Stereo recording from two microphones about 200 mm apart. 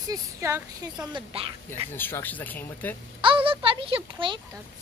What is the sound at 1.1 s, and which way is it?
Speech, 25° right (ahead or behind).